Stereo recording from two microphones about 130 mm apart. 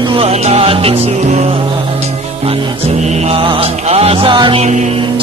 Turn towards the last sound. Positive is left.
turn(degrees=-65)  # may be behind; listen again after turning